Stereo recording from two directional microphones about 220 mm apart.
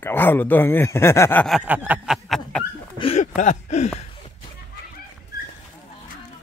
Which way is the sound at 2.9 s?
25° left (ahead or behind).